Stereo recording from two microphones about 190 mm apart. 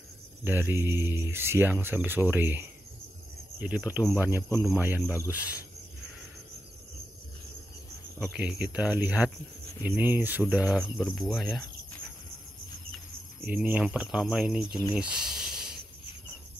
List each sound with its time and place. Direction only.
0.4 s speech: 10° right (ahead or behind)
3.6 s speech: 10° right (ahead or behind)
8.4 s speech: 5° right (ahead or behind)
10.7 s speech: centre (ahead or behind)
13.4 s speech: 10° right (ahead or behind)
15.0 s a sound: 5° right (ahead or behind)